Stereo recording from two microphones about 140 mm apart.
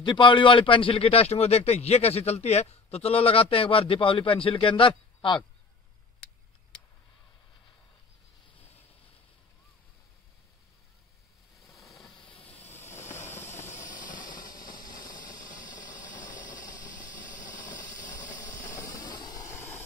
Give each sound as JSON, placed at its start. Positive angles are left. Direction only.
{"t": 0.0, "sound": "speech", "side_deg": 35}
{"t": 11.6, "sound": "a sound", "side_deg": 0}
{"t": 12.2, "sound": "hiss", "side_deg": 35}
{"t": 13.7, "sound": "hiss", "side_deg": 65}
{"t": 14.7, "sound": "vehicle", "side_deg": 80}
{"t": 15.0, "sound": "steam", "side_deg": 70}
{"t": 15.3, "sound": "steam", "side_deg": 25}
{"t": 15.6, "sound": "engine", "side_deg": 65}
{"t": 16.7, "sound": "a sound", "side_deg": 65}
{"t": 18.8, "sound": "vehicle", "side_deg": 25}